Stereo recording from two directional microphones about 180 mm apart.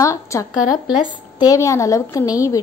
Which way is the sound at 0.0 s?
15° left (ahead or behind).